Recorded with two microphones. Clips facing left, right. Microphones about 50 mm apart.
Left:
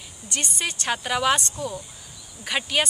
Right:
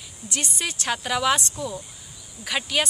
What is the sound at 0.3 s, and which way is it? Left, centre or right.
Speech, centre.